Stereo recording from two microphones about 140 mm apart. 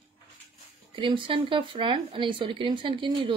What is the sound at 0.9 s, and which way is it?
Speech, 40° right (ahead or behind).